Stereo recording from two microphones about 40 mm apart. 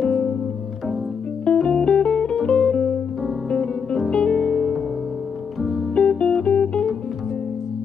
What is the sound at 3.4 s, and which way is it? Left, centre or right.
Music, centre.